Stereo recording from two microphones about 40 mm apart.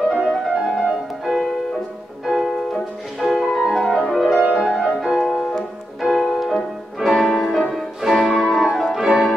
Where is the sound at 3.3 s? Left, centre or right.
Centre.